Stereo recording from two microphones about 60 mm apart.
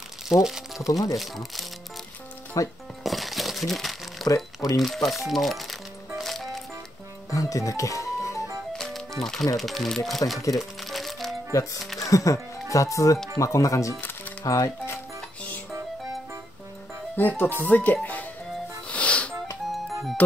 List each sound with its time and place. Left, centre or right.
0.3 s speech: centre
0.8 s speech: left
1.1 s speech: centre
2.6 s speech: left
3.0 s crumpling: centre
4.7 s music: centre
7.2 s music: left
8.7 s music: centre
9.2 s speech: centre
10.5 s music: centre
12.1 s speech: left
17.2 s speech: left
18.9 s music: left